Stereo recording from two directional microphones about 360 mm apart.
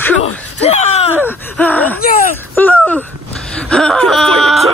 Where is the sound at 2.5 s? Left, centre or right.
Centre.